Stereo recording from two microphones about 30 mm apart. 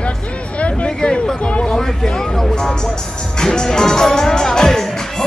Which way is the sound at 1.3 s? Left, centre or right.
Left.